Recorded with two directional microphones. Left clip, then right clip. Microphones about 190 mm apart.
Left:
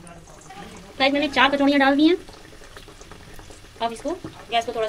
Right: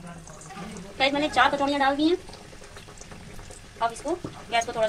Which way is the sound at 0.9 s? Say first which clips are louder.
Left 3 dB; 20° left (ahead or behind).